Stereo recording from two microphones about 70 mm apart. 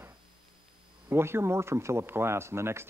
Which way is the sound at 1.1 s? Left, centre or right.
Right.